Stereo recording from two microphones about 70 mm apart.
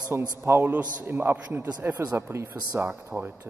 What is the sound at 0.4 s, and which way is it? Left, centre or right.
Speech, right.